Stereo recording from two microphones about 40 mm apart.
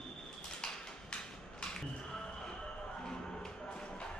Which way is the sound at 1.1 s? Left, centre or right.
Centre.